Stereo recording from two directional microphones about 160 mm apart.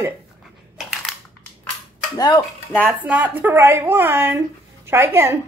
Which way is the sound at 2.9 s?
10° right (ahead or behind).